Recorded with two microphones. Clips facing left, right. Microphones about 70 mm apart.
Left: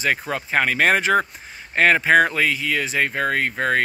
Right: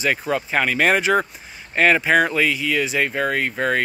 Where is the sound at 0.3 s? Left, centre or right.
Left.